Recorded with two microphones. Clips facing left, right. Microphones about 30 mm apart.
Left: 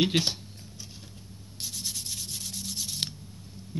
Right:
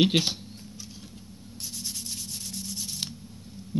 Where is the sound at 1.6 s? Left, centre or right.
Left.